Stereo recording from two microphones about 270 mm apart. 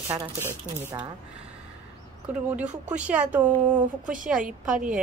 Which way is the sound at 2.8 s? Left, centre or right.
Centre.